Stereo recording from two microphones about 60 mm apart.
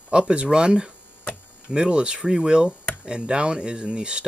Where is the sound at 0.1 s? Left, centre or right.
Centre.